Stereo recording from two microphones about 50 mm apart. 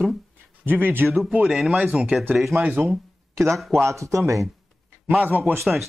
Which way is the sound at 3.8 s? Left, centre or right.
Right.